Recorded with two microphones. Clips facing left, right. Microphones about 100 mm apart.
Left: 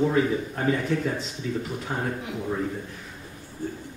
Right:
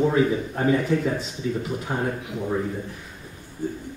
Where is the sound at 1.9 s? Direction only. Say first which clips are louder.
Right 3 dB; 10° right (ahead or behind).